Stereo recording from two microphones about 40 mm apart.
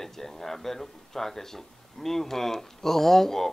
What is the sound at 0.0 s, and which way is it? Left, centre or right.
Speech, centre.